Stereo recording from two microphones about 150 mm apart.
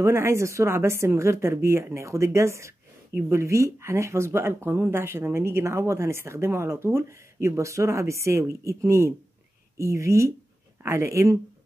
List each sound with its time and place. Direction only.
0.0 s speech: 20° right (ahead or behind)